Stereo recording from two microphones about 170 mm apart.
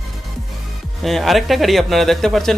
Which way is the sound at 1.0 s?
Centre (ahead or behind).